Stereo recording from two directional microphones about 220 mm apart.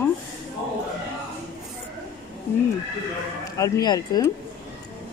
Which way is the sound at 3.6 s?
15° left (ahead or behind).